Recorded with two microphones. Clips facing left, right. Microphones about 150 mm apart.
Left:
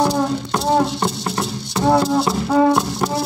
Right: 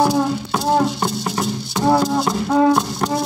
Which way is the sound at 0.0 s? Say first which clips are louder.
Right 1 dB; 5° right (ahead or behind).